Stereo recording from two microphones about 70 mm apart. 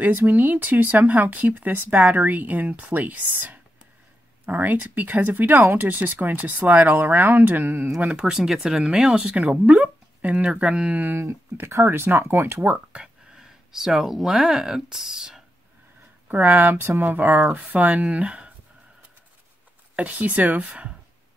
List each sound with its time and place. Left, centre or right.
0.0 s speech: right
8.0 s speech: centre
11.1 s speech: right
12.7 s speech: centre
16.3 s speech: right
20.0 s speech: right